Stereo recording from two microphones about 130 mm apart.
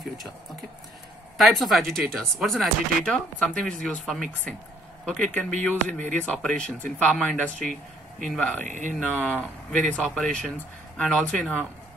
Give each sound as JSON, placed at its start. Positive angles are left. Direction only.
{"t": 1.4, "sound": "speech", "side_deg": 0}
{"t": 5.1, "sound": "speech", "side_deg": 10}
{"t": 8.6, "sound": "speech", "side_deg": -75}
{"t": 9.1, "sound": "speech", "side_deg": 10}